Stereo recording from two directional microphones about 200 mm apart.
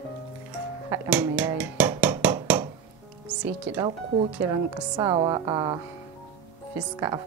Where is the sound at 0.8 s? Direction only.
15° right (ahead or behind).